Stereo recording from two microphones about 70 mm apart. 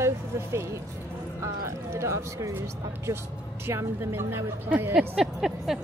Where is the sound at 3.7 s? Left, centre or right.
Right.